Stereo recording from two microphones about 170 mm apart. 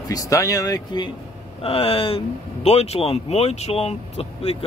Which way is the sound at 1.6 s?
35° left (ahead or behind).